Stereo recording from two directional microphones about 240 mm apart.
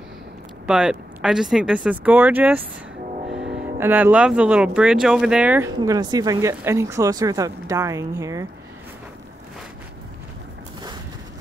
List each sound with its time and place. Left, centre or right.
0.7 s speech: centre
3.7 s speech: centre
5.8 s speech: centre